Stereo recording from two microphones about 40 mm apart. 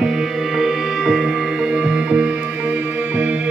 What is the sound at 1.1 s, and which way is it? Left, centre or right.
Music, right.